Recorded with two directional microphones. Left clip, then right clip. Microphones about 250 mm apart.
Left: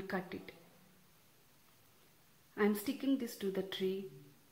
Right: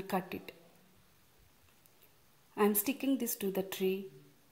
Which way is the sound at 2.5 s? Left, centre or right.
Centre.